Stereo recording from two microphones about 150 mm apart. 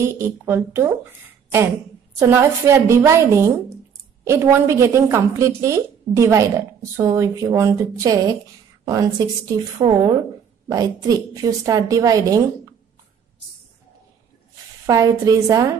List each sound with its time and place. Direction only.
0.0 s a woman's voice: 15° right (ahead or behind)
14.9 s a woman's voice: 20° right (ahead or behind)